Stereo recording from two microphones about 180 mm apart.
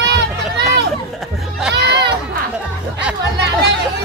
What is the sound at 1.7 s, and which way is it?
Chatter, 70° right (ahead or behind).